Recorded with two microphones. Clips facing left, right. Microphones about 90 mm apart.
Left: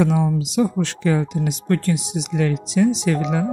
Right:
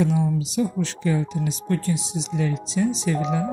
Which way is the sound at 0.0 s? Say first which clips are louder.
Left 3 dB; 85° left.